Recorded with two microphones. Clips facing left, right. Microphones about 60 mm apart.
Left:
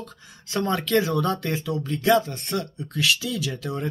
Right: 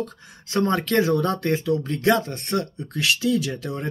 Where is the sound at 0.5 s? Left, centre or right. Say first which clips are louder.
Right 2 dB; right.